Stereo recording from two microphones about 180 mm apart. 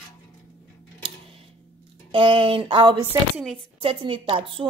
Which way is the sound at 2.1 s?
30° right (ahead or behind).